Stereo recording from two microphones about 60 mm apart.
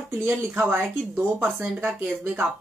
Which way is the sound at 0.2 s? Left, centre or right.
Right.